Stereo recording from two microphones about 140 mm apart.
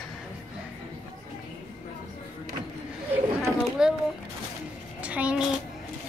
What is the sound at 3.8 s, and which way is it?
Speech, 5° right (ahead or behind).